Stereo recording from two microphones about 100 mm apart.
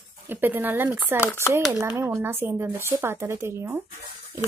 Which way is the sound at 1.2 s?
20° left (ahead or behind).